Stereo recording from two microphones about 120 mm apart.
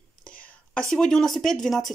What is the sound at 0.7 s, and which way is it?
Speech, 5° left (ahead or behind).